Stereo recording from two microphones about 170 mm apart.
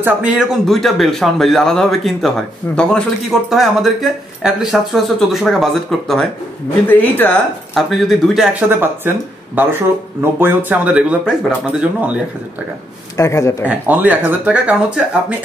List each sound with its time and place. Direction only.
0.0 s speech: 5° right (ahead or behind)
10.4 s speech: 10° right (ahead or behind)
13.2 s speech: 20° left (ahead or behind)
13.7 s speech: 10° right (ahead or behind)